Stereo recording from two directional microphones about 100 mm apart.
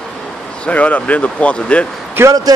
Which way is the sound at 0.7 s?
15° left (ahead or behind).